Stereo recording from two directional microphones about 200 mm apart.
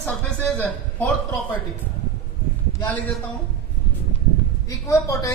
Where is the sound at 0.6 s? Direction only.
5° left (ahead or behind).